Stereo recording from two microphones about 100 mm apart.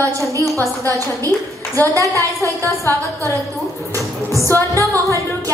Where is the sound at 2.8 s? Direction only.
25° left (ahead or behind).